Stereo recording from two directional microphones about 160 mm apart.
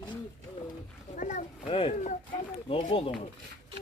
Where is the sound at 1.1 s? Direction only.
50° left (ahead or behind).